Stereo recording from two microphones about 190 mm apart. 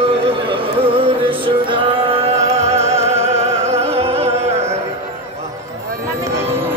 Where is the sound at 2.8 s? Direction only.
15° right (ahead or behind).